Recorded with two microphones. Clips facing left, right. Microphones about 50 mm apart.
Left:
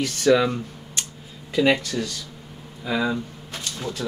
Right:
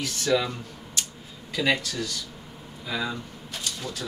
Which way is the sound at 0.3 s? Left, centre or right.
Left.